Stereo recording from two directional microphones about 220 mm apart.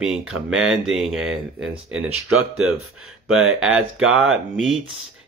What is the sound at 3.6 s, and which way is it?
Speech, 5° right (ahead or behind).